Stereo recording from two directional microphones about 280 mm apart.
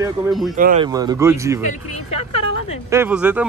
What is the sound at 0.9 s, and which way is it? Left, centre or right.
Speech, centre.